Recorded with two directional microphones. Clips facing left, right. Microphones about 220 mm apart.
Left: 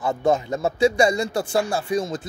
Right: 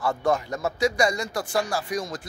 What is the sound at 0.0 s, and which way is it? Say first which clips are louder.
Speech: left 3 dB; 20° left (ahead or behind).